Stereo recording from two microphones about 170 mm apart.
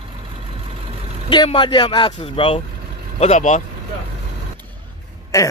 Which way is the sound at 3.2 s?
45° left (ahead or behind).